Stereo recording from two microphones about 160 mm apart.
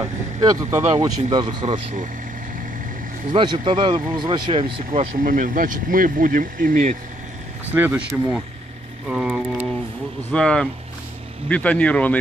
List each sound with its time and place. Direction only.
0.0 s vehicle: 20° right (ahead or behind)
0.9 s speech: 25° right (ahead or behind)
3.3 s speech: 30° right (ahead or behind)
5.2 s speech: 55° right (ahead or behind)
7.7 s a sound: 10° right (ahead or behind)
9.0 s a sound: 5° right (ahead or behind)
10.3 s speech: 5° left (ahead or behind)